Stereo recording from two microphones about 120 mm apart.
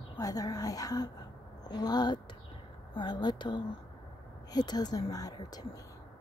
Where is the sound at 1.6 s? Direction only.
35° left (ahead or behind).